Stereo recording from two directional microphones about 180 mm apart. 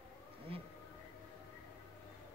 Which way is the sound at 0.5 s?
30° right (ahead or behind).